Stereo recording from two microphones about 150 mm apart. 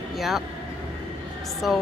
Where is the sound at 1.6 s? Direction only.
Centre (ahead or behind).